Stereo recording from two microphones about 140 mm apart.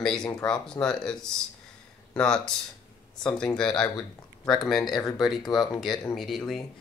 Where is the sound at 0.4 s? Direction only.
5° left (ahead or behind).